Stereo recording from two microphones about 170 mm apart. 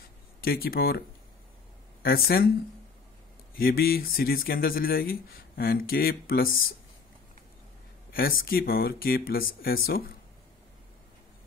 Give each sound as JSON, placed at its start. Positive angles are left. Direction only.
{"t": 0.4, "sound": "speech", "side_deg": 60}
{"t": 2.0, "sound": "speech", "side_deg": 60}
{"t": 3.5, "sound": "speech", "side_deg": 60}
{"t": 8.1, "sound": "speech", "side_deg": 60}